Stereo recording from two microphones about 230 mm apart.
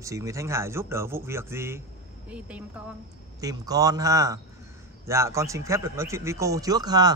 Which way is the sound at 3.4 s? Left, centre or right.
Centre.